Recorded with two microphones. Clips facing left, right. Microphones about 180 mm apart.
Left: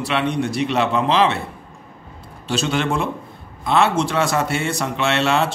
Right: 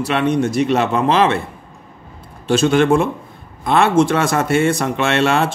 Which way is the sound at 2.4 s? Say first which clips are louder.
Right 8 dB; 50° right (ahead or behind).